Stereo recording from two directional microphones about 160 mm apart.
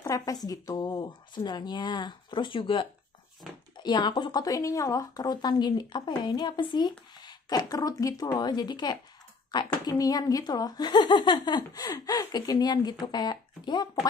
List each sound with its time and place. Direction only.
0.0 s speech: 20° left (ahead or behind)